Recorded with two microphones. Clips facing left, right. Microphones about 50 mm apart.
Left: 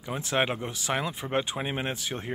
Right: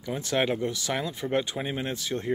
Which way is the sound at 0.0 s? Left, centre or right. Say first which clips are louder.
Right 1 dB; centre.